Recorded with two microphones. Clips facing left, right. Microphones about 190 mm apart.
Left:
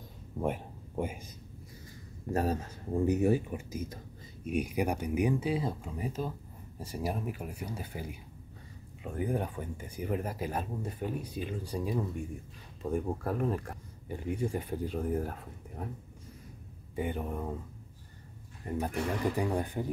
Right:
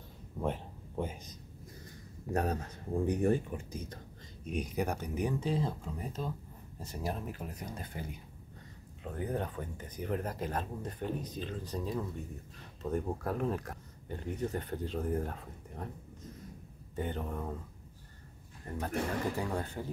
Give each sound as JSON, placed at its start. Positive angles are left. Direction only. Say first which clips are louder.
{"t": 0.4, "sound": "speech", "louder": "left 2 dB", "side_deg": 10}
{"t": 2.3, "sound": "speech", "louder": "left 2 dB", "side_deg": 5}
{"t": 18.6, "sound": "speech", "louder": "left 2 dB", "side_deg": 15}